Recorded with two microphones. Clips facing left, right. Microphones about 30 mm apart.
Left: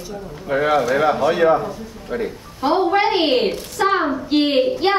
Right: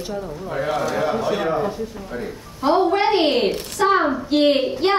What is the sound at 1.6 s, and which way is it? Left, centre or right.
Speech, right.